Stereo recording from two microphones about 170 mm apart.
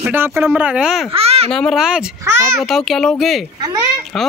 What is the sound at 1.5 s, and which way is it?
A child's voice, centre (ahead or behind).